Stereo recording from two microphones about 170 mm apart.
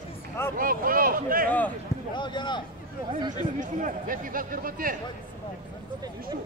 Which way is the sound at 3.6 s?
50° right (ahead or behind).